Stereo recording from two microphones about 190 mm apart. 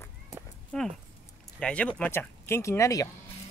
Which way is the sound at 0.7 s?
5° left (ahead or behind).